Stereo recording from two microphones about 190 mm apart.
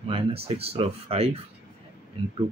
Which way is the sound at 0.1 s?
30° right (ahead or behind).